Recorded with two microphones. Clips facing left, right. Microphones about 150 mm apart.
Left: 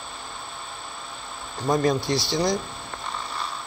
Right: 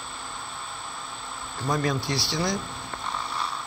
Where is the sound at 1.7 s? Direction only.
25° left (ahead or behind).